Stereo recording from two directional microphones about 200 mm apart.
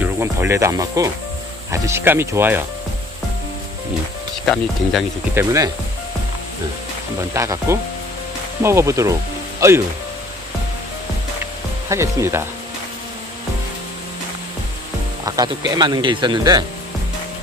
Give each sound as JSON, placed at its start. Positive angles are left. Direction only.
{"t": 0.0, "sound": "insect", "side_deg": -10}
{"t": 5.3, "sound": "insect", "side_deg": -15}
{"t": 7.3, "sound": "insect", "side_deg": -15}
{"t": 9.6, "sound": "speech", "side_deg": -15}
{"t": 11.9, "sound": "insect", "side_deg": -15}
{"t": 15.2, "sound": "speech", "side_deg": -20}